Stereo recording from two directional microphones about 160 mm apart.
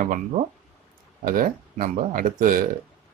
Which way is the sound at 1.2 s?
60° right (ahead or behind).